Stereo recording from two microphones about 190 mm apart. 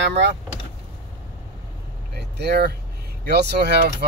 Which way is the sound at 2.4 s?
60° right (ahead or behind).